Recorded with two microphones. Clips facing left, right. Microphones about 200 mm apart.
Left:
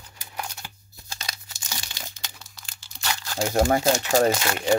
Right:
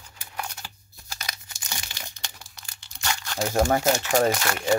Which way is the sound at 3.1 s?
30° left (ahead or behind).